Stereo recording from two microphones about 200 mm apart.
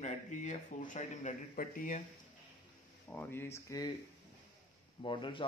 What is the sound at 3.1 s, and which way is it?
Speech, 10° left (ahead or behind).